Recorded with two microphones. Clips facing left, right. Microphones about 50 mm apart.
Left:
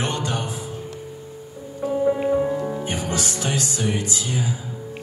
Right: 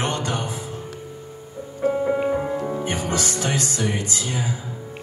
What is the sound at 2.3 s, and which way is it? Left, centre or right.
Music, centre.